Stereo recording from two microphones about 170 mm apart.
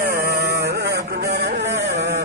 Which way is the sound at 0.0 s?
60° right (ahead or behind).